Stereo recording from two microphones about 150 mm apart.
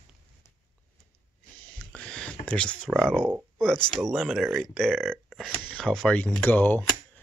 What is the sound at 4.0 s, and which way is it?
Speech, centre (ahead or behind).